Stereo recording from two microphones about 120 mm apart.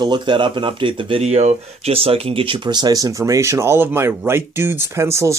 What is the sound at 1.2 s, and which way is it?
Speech, 65° right (ahead or behind).